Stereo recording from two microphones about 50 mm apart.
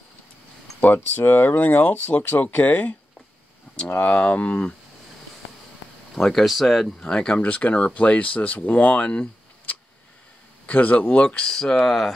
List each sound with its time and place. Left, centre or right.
0.7 s speech: left
6.1 s speech: centre
7.1 s speech: centre
10.7 s speech: left
11.1 s speech: centre